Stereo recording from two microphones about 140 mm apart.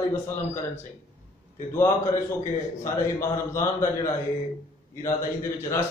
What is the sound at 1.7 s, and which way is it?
A man's voice, 20° left (ahead or behind).